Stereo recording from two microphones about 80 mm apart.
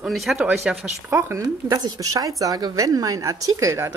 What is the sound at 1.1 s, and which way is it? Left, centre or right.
Speech, right.